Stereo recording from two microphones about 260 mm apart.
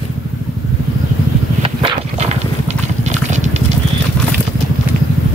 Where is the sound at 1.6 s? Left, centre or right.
Centre.